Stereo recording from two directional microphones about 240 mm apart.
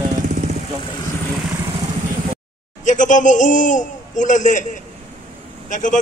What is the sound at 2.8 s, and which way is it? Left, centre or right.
A man's voice, left.